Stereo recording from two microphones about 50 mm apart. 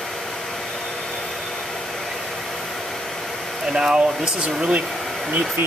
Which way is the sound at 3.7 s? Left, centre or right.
Centre.